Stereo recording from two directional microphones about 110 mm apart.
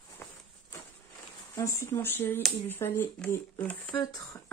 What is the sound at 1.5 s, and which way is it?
Speech, 25° left (ahead or behind).